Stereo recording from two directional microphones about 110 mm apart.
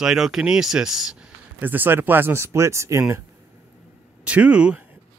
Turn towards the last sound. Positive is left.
turn(degrees=-10)  # may be behind; listen again after turning